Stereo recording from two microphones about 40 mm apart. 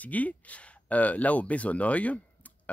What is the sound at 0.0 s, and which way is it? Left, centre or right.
Speech, left.